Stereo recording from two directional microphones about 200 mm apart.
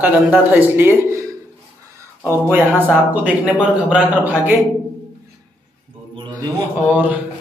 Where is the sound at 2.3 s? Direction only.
10° right (ahead or behind).